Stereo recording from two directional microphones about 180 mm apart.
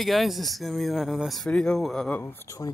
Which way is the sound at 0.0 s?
Centre (ahead or behind).